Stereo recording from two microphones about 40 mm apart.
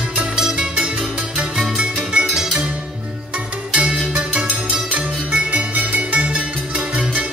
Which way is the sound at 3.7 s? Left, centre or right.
Right.